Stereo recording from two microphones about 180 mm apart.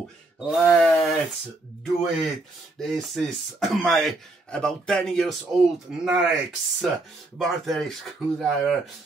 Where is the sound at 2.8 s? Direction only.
Centre (ahead or behind).